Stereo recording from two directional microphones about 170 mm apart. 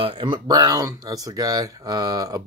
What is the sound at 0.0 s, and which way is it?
Speech, 30° right (ahead or behind).